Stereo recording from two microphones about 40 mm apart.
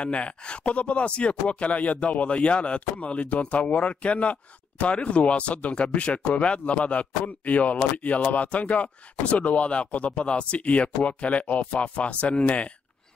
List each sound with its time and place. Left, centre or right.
0.0 s speech: left